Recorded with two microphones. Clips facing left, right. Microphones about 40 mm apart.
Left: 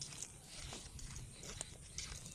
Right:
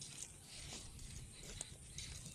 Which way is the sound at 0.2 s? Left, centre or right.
Left.